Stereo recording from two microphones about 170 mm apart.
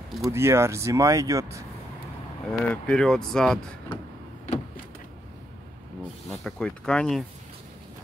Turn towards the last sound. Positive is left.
turn(degrees=5)  # may be behind; listen again after turning